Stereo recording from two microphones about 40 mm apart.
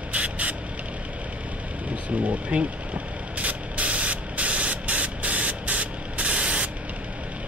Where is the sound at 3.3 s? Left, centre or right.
Right.